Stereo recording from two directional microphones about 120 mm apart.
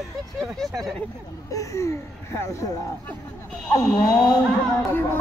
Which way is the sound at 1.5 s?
25° left (ahead or behind).